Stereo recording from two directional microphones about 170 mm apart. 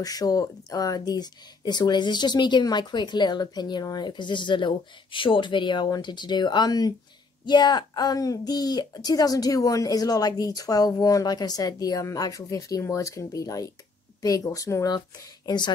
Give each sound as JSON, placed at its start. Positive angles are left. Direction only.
{"t": 0.0, "sound": "speech", "side_deg": 20}